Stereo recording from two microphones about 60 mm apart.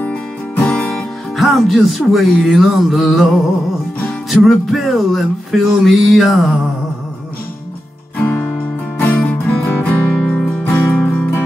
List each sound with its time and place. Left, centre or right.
0.6 s music: left
1.3 s music: centre
8.3 s music: left
10.1 s music: centre
10.7 s music: left
11.0 s music: left